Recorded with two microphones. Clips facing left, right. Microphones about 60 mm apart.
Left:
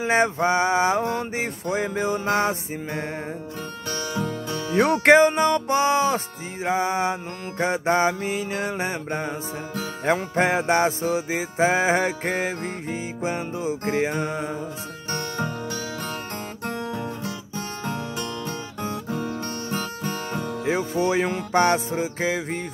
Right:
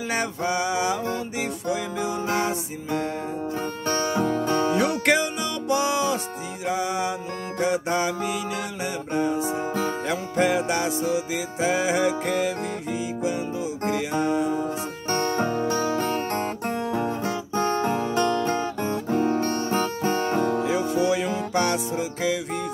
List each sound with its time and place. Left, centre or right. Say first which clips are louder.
0.1 s music: left 6 dB; left
3.9 s music: right 5 dB; right
4.7 s music: left 6 dB; left
15.0 s music: right 5 dB; right
16.6 s guitar: right 4 dB; right
20.6 s music: right 1 dB; left